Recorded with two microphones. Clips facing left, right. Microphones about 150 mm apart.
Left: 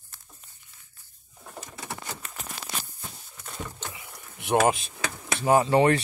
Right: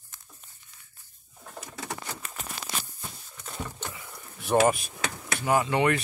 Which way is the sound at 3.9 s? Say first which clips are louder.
Right 1 dB; 20° left (ahead or behind).